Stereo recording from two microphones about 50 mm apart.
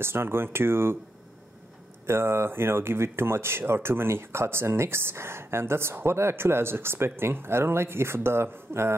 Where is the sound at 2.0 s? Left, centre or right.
Right.